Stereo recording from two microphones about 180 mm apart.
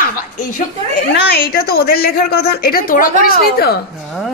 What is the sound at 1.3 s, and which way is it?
A woman's voice, 60° left (ahead or behind).